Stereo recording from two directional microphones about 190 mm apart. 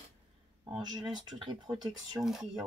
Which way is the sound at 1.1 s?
25° right (ahead or behind).